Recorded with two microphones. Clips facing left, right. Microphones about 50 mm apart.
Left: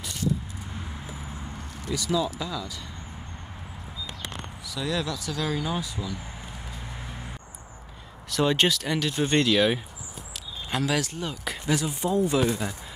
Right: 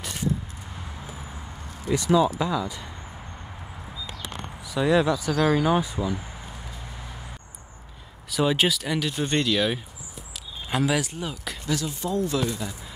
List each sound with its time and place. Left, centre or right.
1.9 s speech: right
4.6 s speech: right
8.3 s speech: centre
10.7 s speech: centre
11.6 s speech: centre